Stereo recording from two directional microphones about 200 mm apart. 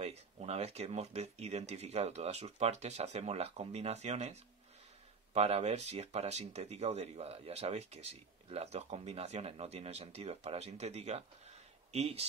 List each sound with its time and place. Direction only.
0.0 s speech: 30° right (ahead or behind)